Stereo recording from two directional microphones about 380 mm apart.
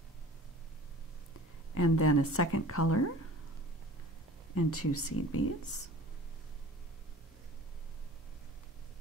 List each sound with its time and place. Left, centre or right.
1.8 s a woman's voice: left
4.6 s a woman's voice: left